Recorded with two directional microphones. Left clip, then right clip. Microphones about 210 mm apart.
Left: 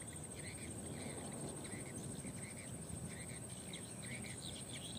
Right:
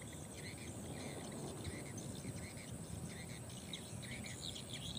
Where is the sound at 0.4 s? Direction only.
50° right (ahead or behind).